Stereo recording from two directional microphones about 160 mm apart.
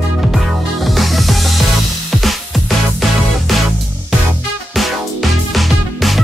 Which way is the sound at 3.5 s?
Centre (ahead or behind).